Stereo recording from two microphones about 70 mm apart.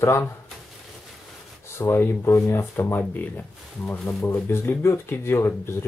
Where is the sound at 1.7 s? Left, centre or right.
Left.